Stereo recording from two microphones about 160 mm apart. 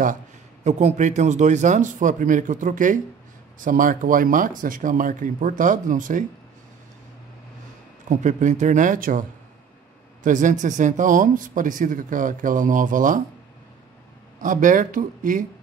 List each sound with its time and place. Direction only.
0.7 s speech: 45° right (ahead or behind)
8.1 s speech: 50° right (ahead or behind)
10.2 s speech: 50° right (ahead or behind)
14.4 s speech: 55° right (ahead or behind)